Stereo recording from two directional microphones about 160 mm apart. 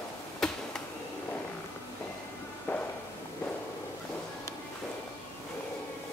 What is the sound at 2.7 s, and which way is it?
Music, 10° left (ahead or behind).